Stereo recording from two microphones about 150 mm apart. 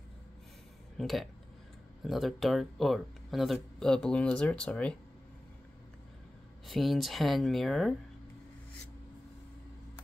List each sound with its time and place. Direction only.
0.9 s speech: centre (ahead or behind)
6.7 s speech: centre (ahead or behind)